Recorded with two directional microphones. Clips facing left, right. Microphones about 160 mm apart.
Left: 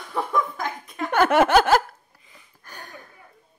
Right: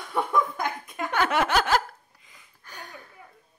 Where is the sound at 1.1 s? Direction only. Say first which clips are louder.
Left 7 dB; 50° left (ahead or behind).